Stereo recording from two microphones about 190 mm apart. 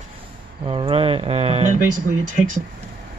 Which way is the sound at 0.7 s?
30° right (ahead or behind).